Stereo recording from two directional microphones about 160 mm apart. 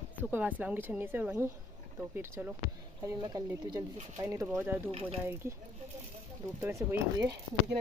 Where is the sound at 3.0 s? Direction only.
20° right (ahead or behind).